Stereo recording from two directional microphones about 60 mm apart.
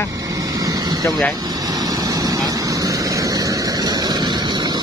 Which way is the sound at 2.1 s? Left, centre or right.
Right.